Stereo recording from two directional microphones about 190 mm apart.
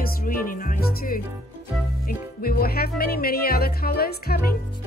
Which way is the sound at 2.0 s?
50° left (ahead or behind).